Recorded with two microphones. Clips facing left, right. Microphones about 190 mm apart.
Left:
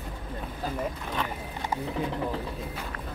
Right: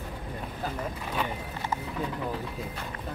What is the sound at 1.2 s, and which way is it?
Speech, 5° right (ahead or behind).